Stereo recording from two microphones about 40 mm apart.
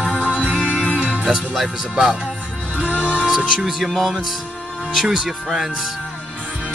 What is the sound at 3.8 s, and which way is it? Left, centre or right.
Speech, centre.